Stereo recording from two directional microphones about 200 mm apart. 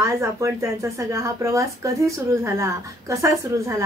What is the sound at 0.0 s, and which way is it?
Speech, 15° right (ahead or behind).